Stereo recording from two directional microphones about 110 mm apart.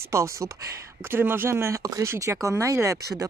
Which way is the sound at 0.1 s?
25° right (ahead or behind).